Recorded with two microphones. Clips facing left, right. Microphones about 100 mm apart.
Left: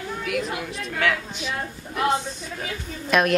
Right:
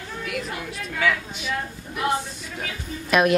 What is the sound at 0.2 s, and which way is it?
A woman's voice, centre (ahead or behind).